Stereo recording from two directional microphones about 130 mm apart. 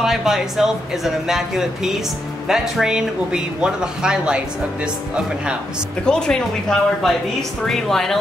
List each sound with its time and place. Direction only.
0.0 s speech: centre (ahead or behind)
6.0 s speech: 5° left (ahead or behind)